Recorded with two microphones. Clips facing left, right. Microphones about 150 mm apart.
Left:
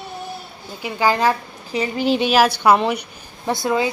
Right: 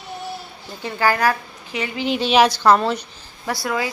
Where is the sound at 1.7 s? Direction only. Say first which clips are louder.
Left 4 dB; 35° left (ahead or behind).